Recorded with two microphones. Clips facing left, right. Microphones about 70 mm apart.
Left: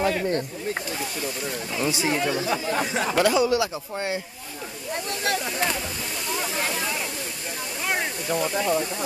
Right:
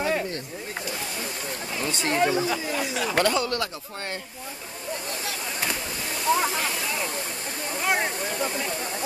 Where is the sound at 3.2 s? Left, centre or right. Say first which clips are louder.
Left 4 dB; centre.